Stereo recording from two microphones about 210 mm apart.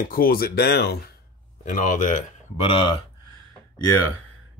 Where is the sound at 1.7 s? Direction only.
35° left (ahead or behind).